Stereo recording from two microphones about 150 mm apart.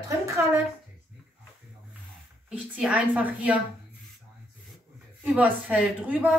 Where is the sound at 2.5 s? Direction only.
10° right (ahead or behind).